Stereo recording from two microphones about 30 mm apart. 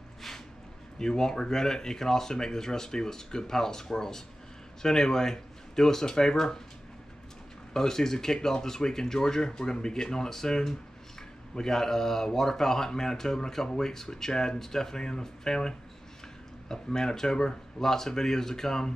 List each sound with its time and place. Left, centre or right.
0.9 s speech: left
7.7 s speech: centre